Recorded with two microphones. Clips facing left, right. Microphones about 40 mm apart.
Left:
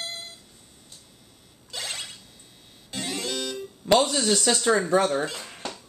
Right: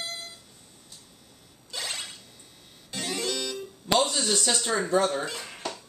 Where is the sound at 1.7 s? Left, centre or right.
Centre.